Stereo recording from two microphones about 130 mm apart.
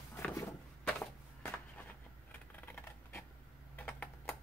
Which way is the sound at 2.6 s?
15° left (ahead or behind).